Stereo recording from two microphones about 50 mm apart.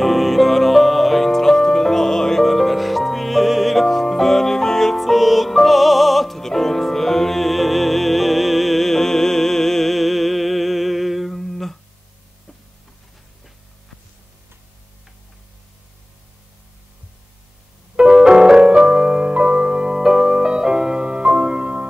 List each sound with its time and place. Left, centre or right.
0.0 s music: centre
17.9 s music: centre